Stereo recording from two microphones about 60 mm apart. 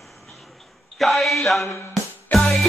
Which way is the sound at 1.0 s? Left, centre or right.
Centre.